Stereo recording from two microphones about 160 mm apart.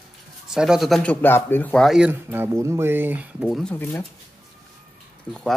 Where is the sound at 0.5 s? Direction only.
5° right (ahead or behind).